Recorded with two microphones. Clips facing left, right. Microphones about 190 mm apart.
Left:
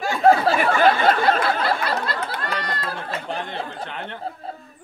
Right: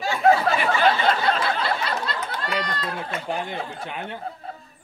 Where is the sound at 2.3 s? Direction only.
55° left (ahead or behind).